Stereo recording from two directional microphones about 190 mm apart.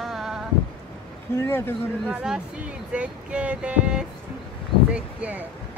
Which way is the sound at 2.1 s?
5° right (ahead or behind).